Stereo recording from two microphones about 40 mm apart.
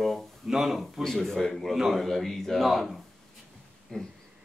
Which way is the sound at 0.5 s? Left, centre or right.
Centre.